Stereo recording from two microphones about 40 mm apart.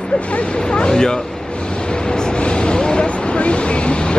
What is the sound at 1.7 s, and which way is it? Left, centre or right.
Vehicle, left.